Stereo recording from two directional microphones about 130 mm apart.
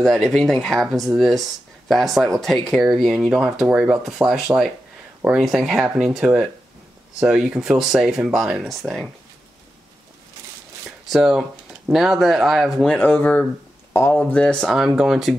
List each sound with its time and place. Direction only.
0.0 s speech: centre (ahead or behind)
11.1 s speech: centre (ahead or behind)
12.9 s speech: 10° left (ahead or behind)